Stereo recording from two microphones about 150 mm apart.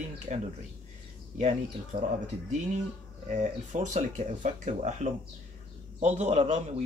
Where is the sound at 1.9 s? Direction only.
35° right (ahead or behind).